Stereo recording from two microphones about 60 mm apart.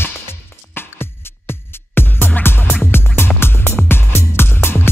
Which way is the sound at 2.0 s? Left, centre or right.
Left.